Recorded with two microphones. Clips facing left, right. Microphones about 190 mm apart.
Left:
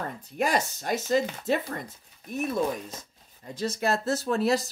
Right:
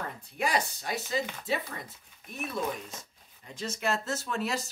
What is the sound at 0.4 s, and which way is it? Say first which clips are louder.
Speech: left 4 dB; 45° left (ahead or behind).